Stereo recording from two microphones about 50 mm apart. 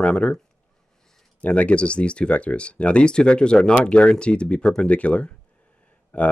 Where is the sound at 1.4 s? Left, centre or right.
Left.